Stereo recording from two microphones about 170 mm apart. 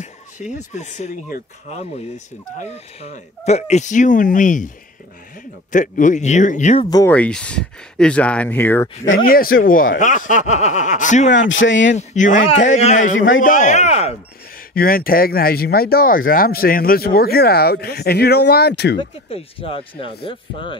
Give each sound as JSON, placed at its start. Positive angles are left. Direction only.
{"t": 0.5, "sound": "speech", "side_deg": 45}
{"t": 5.7, "sound": "speech", "side_deg": 50}
{"t": 6.8, "sound": "speech", "side_deg": 25}
{"t": 7.1, "sound": "speech", "side_deg": 5}
{"t": 9.1, "sound": "speech", "side_deg": 60}
{"t": 11.3, "sound": "speech", "side_deg": 90}
{"t": 11.9, "sound": "speech", "side_deg": 45}
{"t": 14.7, "sound": "speech", "side_deg": 60}
{"t": 18.9, "sound": "speech", "side_deg": 35}